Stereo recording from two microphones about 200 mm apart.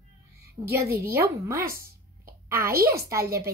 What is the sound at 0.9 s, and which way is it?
Speech, 50° right (ahead or behind).